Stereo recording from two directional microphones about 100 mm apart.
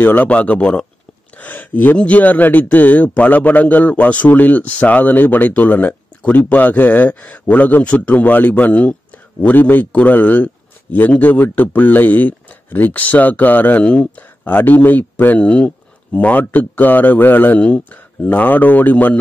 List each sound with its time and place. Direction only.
0.0 s a man's voice: 15° left (ahead or behind)